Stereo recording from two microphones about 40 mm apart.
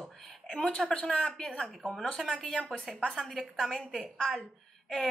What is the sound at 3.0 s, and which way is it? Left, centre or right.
Speech, right.